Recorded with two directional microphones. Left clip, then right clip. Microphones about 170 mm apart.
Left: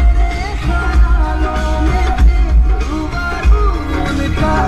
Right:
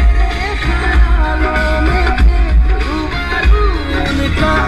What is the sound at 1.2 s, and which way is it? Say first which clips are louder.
Music: right 5 dB; 25° right (ahead or behind).